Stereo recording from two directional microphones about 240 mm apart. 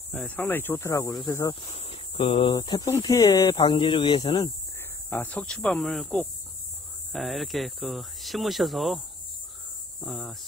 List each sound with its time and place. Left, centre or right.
0.1 s speech: centre
1.7 s speech: left
5.1 s speech: centre
9.9 s cricket: centre